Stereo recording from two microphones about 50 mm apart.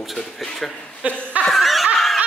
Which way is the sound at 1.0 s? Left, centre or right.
Right.